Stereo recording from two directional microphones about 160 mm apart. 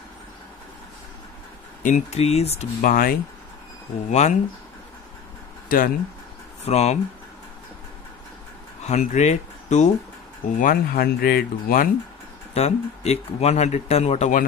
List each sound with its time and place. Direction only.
1.8 s speech: 50° left (ahead or behind)
2.8 s speech: 60° left (ahead or behind)
4.1 s speech: 45° left (ahead or behind)
5.7 s speech: 65° left (ahead or behind)
6.6 s speech: 45° left (ahead or behind)
8.8 s speech: 45° left (ahead or behind)
10.6 s speech: 60° left (ahead or behind)
12.5 s speech: 40° left (ahead or behind)